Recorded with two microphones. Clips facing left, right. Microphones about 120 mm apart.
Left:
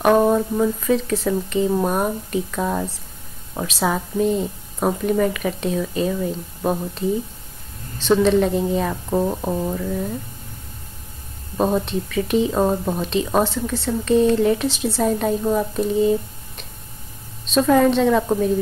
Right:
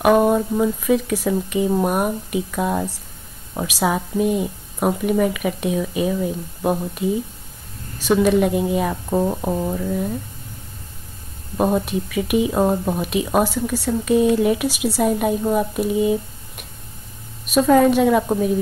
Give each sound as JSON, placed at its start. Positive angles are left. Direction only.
{"t": 0.0, "sound": "speech", "side_deg": -10}
{"t": 11.5, "sound": "speech", "side_deg": -10}